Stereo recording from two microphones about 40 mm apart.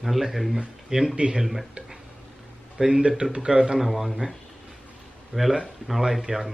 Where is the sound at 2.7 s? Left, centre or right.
Centre.